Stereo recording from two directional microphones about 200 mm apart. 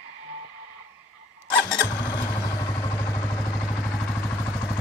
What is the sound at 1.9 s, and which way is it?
Vehicle, 20° left (ahead or behind).